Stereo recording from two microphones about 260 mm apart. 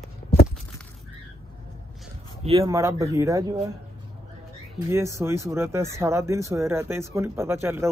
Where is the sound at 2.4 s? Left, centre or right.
Right.